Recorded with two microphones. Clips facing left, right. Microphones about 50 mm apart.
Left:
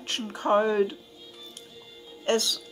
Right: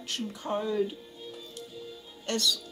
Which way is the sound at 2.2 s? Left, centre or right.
Left.